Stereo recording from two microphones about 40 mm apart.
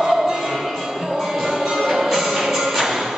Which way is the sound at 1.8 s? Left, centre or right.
Centre.